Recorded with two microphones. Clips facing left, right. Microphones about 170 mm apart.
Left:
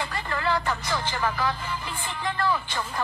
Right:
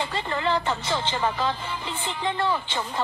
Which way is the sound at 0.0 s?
25° right (ahead or behind).